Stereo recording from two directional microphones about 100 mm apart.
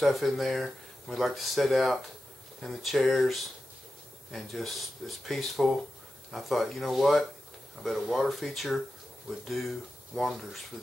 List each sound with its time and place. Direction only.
0.0 s speech: centre (ahead or behind)